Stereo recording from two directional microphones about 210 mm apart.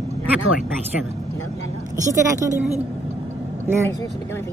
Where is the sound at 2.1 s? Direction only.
15° right (ahead or behind).